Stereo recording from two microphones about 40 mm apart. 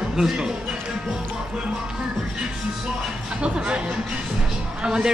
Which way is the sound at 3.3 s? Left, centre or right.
Right.